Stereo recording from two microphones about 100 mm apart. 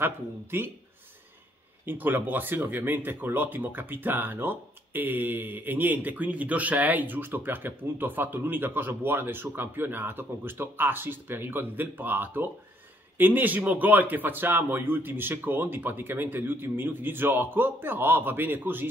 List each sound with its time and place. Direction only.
0.0 s speech: 20° right (ahead or behind)
1.9 s speech: 20° right (ahead or behind)